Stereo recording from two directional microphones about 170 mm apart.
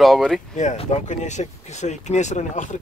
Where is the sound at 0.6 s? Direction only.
45° left (ahead or behind).